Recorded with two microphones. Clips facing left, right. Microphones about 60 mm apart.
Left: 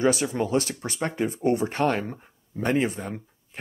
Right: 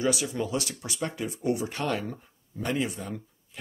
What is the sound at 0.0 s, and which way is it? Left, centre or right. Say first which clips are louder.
Speech: left 5 dB; left.